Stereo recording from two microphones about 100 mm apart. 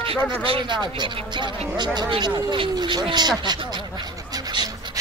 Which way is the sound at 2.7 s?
45° right (ahead or behind).